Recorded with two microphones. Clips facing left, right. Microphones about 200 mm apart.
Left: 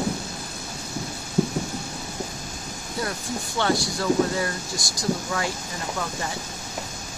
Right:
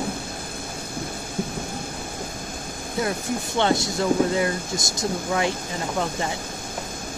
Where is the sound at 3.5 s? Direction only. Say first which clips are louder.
Right 2 dB; 20° right (ahead or behind).